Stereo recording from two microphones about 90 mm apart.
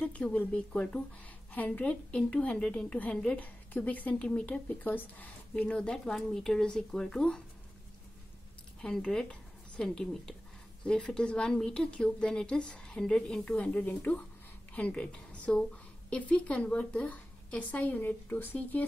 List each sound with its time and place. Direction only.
0.0 s a woman's voice: 15° left (ahead or behind)
8.8 s a woman's voice: 10° left (ahead or behind)